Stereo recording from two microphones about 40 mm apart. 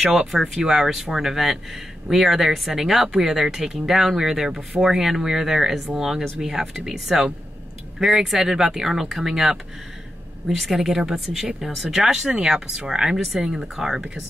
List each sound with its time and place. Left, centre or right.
0.3 s speech: centre
12.3 s speech: right